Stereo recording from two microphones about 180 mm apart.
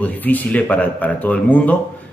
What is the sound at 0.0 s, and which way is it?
Speech, 10° left (ahead or behind).